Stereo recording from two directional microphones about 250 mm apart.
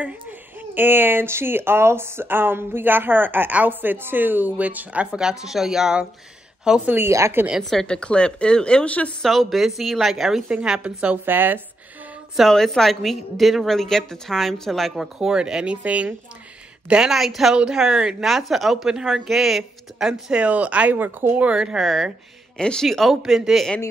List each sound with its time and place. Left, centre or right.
0.6 s a woman's voice: centre